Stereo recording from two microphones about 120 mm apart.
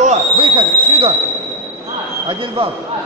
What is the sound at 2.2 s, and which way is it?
Speech, 45° right (ahead or behind).